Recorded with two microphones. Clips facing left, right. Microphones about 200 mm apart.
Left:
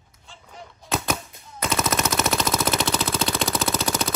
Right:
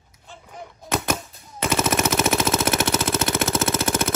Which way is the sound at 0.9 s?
Centre (ahead or behind).